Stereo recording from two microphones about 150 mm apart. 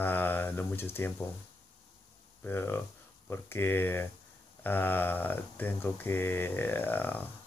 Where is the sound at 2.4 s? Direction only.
15° left (ahead or behind).